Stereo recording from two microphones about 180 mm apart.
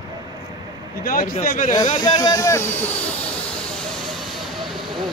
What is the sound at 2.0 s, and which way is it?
Speech, 20° left (ahead or behind).